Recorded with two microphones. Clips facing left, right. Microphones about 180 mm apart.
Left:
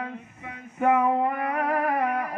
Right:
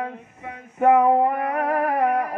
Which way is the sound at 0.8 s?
40° right (ahead or behind).